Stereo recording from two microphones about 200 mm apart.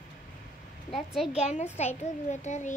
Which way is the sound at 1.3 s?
30° left (ahead or behind).